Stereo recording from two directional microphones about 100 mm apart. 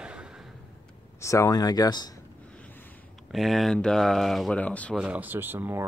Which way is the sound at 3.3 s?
Centre (ahead or behind).